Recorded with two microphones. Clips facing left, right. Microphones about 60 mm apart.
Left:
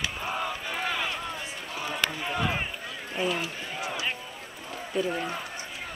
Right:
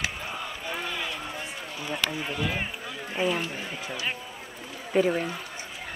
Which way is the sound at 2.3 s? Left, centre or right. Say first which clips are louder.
Left 1 dB; centre.